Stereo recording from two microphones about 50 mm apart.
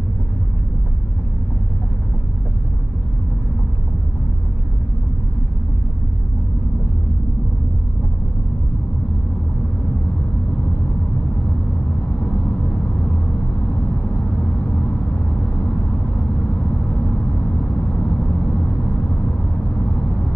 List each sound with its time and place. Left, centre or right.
17.7 s vehicle: centre